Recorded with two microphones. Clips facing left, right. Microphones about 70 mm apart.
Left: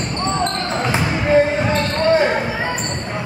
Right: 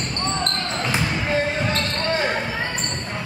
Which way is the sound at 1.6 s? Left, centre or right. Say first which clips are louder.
Left 6 dB; centre.